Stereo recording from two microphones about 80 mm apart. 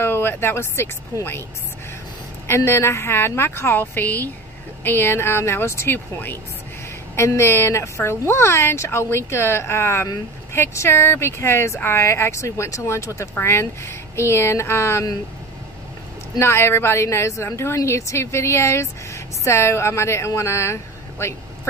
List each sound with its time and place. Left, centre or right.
0.0 s speech: left
2.4 s a woman's voice: left
7.2 s a woman's voice: left
16.3 s a woman's voice: left